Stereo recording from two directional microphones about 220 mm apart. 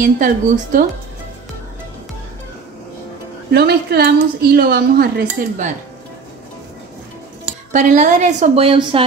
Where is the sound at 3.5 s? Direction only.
50° right (ahead or behind).